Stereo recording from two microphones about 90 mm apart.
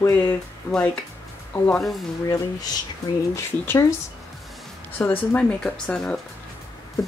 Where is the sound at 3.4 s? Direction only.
35° left (ahead or behind).